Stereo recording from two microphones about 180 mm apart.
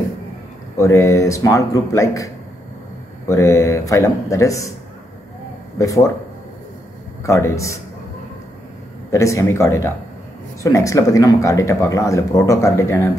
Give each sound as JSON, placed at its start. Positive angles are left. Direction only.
{"t": 0.7, "sound": "speech", "side_deg": 15}
{"t": 7.2, "sound": "speech", "side_deg": 15}
{"t": 9.1, "sound": "speech", "side_deg": 15}